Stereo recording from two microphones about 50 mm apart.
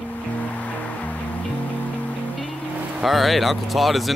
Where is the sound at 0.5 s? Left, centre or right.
Left.